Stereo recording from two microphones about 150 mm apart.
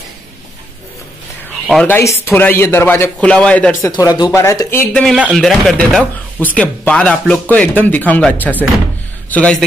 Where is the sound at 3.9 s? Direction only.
25° left (ahead or behind).